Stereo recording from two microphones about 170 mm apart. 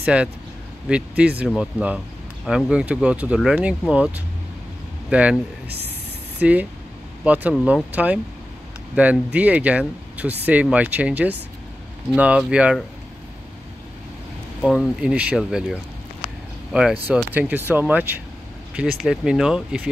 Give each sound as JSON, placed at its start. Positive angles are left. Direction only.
{"t": 0.0, "sound": "speech", "side_deg": -5}
{"t": 6.4, "sound": "speech", "side_deg": -10}
{"t": 14.6, "sound": "speech", "side_deg": -5}